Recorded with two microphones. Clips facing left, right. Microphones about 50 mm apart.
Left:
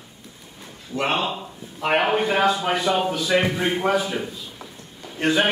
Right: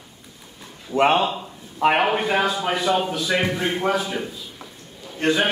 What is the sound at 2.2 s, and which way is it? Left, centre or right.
A man's voice, centre.